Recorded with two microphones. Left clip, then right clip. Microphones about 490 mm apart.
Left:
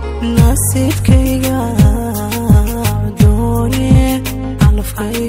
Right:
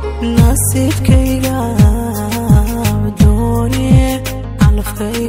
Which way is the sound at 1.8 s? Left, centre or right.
Centre.